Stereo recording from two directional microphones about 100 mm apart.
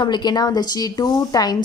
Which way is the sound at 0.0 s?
45° left (ahead or behind).